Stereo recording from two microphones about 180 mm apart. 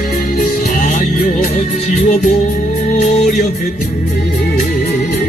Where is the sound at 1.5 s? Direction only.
35° left (ahead or behind).